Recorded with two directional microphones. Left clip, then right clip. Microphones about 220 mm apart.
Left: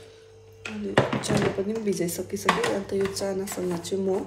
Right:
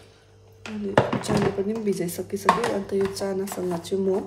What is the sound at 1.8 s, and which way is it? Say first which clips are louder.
Speech: right 1 dB; 10° right (ahead or behind).